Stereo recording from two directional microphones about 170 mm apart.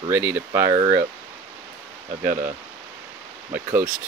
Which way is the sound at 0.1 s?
15° right (ahead or behind).